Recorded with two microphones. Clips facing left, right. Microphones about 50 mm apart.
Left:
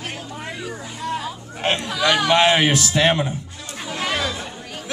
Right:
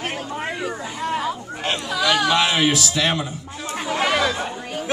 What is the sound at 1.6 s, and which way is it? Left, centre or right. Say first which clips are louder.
Chatter: left 3 dB; left.